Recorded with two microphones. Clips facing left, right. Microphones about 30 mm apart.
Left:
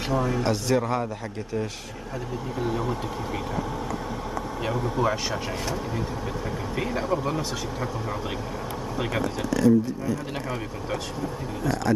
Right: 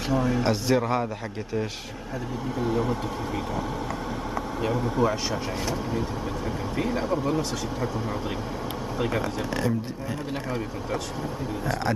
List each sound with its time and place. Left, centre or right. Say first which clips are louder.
0.1 s speech: right 1 dB; centre
2.6 s speech: right 2 dB; centre
4.6 s speech: right 1 dB; centre
8.9 s speech: right 1 dB; centre
9.5 s speech: left 7 dB; right